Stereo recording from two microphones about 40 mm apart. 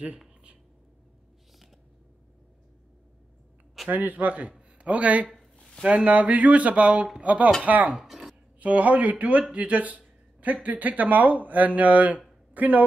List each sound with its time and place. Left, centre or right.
3.9 s a man's voice: right
4.3 s a man's voice: right
8.0 s a sound: centre
8.5 s a man's voice: right